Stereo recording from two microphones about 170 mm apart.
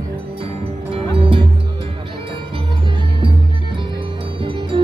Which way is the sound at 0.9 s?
30° right (ahead or behind).